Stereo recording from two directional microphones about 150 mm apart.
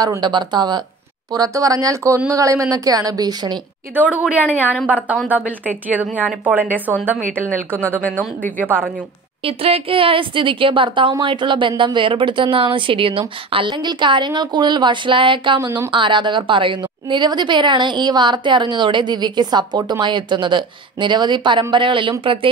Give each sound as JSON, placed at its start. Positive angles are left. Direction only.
{"t": 0.0, "sound": "speech", "side_deg": -25}
{"t": 3.9, "sound": "a woman's voice", "side_deg": -10}
{"t": 8.0, "sound": "speech", "side_deg": 10}
{"t": 8.6, "sound": "a woman's voice", "side_deg": -15}
{"t": 9.4, "sound": "a woman's voice", "side_deg": -40}